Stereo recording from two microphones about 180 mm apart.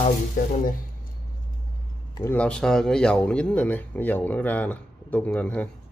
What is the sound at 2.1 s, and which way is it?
Speech, 10° left (ahead or behind).